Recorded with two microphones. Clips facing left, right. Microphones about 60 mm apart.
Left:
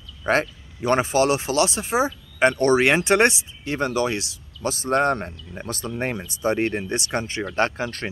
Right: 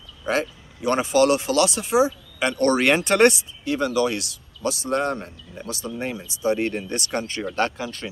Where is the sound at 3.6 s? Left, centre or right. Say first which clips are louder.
Right 1 dB; left.